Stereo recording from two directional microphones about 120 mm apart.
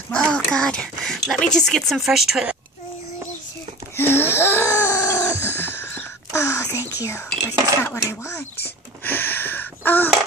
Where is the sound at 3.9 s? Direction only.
20° left (ahead or behind).